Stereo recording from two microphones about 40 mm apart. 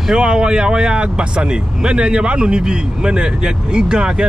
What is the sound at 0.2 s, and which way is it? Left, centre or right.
Speech, right.